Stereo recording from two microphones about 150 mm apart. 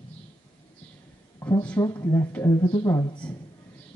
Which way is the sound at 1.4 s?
10° left (ahead or behind).